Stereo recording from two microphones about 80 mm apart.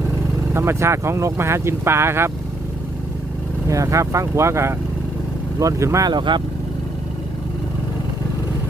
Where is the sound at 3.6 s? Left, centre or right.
Right.